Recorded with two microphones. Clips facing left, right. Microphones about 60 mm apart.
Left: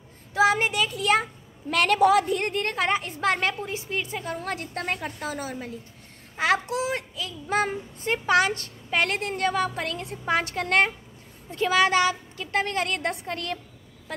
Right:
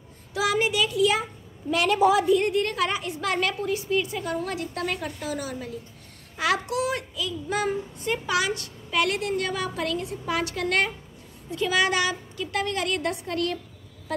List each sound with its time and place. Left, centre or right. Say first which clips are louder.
0.3 s a child's voice: left 3 dB; left
1.7 s a child's voice: left 1 dB; left